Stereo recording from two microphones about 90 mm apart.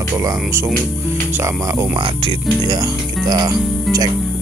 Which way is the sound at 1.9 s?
70° right (ahead or behind).